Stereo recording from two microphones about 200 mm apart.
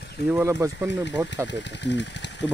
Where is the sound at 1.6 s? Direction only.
60° left (ahead or behind).